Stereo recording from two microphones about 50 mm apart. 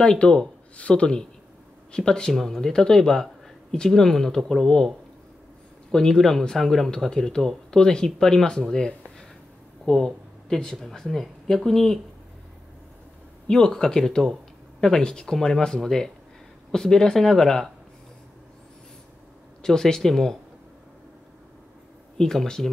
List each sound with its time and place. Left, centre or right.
0.0 s speech: centre
13.5 s speech: centre
19.6 s speech: centre
22.1 s speech: centre